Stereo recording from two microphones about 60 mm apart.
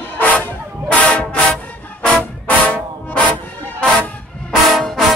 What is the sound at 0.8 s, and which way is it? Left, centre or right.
Music, centre.